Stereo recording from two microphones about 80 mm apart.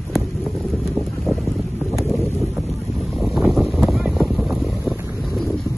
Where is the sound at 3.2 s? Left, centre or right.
Centre.